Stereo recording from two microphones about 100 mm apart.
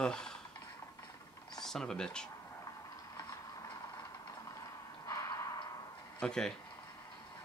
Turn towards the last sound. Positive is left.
turn(degrees=5)  # may be behind; listen again after turning